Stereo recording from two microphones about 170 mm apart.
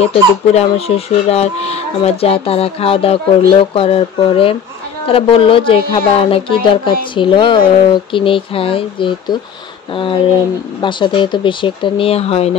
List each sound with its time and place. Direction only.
0.0 s speech: 40° left (ahead or behind)